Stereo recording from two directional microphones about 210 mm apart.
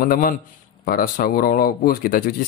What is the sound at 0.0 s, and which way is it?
Speech, 40° left (ahead or behind).